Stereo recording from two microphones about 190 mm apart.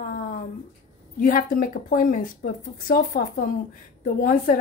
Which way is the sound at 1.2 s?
45° left (ahead or behind).